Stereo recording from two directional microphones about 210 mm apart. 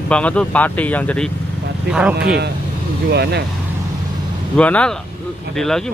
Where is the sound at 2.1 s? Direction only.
50° right (ahead or behind).